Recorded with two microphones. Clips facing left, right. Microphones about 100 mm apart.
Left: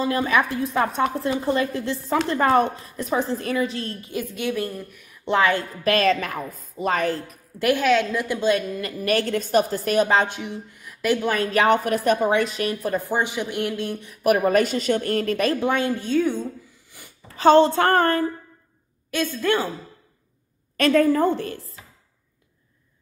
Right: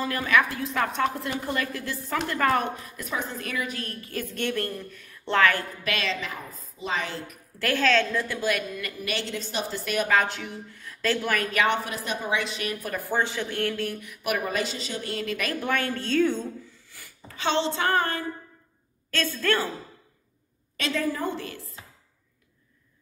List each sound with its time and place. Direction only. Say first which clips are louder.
0.0 s a woman's voice: left 3 dB; 25° left (ahead or behind)
5.9 s a woman's voice: left 11 dB; 45° left (ahead or behind)
7.5 s a woman's voice: left 4 dB; 15° left (ahead or behind)
11.3 s a woman's voice: left 7 dB; 30° left (ahead or behind)
15.6 s a woman's voice: left 5 dB; 20° left (ahead or behind)
16.9 s a sound: left 3 dB; 20° left (ahead or behind)
17.4 s a woman's voice: left 11 dB; 45° left (ahead or behind)
19.0 s a woman's voice: left 3 dB; 15° left (ahead or behind)
20.7 s a woman's voice: left 11 dB; 55° left (ahead or behind); by 21.7 s 35° left (ahead or behind)